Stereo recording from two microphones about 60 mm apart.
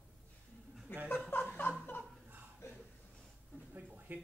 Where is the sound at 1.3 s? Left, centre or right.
Left.